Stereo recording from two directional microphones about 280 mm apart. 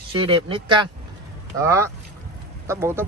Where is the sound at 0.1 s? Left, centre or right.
Centre.